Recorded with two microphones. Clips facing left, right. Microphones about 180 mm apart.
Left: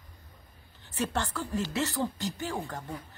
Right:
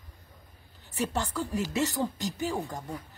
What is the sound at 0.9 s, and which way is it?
Speech, 15° right (ahead or behind).